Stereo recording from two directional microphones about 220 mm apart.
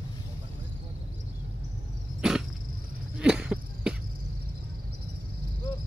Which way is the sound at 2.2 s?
5° right (ahead or behind).